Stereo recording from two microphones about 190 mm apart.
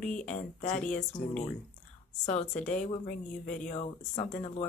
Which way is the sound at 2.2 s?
40° left (ahead or behind).